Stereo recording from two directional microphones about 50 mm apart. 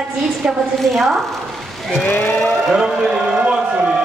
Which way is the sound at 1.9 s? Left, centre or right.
Left.